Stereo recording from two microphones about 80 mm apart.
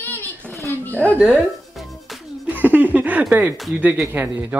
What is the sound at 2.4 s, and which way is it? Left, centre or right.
Laughter, right.